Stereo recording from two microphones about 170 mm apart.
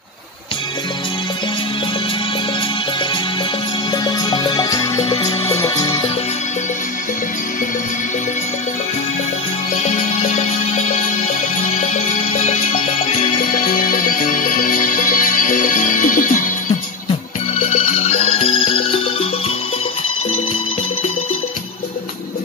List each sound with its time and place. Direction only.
3.9 s music: 25° left (ahead or behind)
9.8 s music: 45° left (ahead or behind)
13.7 s music: 55° left (ahead or behind)
17.6 s music: 40° left (ahead or behind)